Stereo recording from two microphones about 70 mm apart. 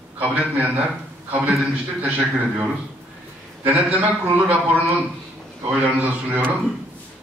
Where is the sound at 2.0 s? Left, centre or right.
Right.